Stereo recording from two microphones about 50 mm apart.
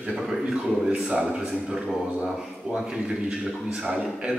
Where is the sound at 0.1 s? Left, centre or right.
Centre.